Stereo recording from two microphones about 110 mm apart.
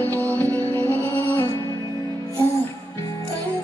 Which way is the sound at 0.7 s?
15° left (ahead or behind).